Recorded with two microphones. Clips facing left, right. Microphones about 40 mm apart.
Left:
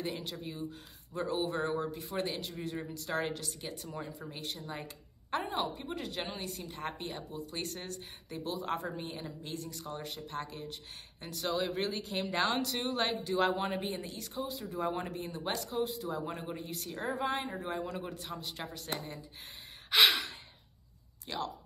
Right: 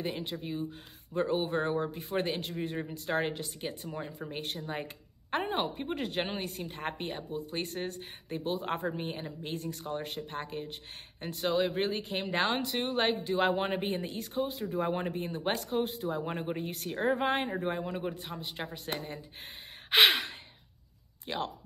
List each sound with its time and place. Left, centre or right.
0.0 s a woman's voice: right
4.1 s a woman's voice: right
19.9 s gasp: right
21.3 s speech: right